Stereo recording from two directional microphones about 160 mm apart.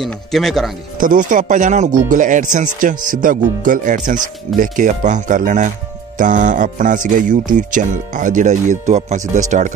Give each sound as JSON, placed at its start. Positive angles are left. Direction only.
{"t": 0.0, "sound": "speech", "side_deg": 0}
{"t": 0.9, "sound": "speech", "side_deg": -55}